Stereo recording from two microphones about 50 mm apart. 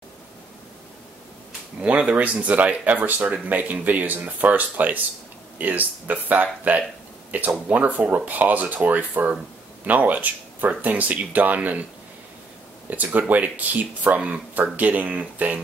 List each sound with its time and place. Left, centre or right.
1.8 s speech: right
12.9 s speech: right